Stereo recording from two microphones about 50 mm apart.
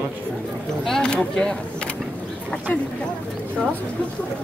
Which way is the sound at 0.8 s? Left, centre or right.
Centre.